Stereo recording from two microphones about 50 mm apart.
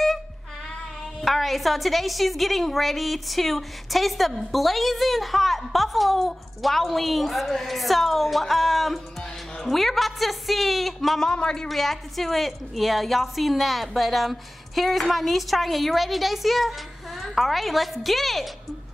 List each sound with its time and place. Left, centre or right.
1.2 s a woman's voice: centre
11.2 s a woman's voice: centre